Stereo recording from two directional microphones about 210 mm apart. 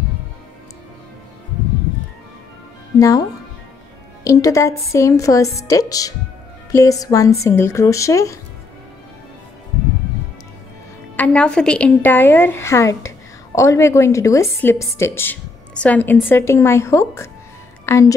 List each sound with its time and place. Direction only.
3.0 s a woman's voice: 15° left (ahead or behind)
11.1 s a woman's voice: 5° left (ahead or behind)